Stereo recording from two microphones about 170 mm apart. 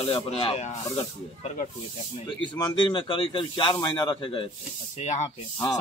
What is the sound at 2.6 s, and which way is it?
Speech, 30° left (ahead or behind).